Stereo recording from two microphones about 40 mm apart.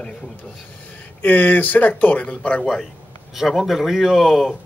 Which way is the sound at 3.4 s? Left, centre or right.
Centre.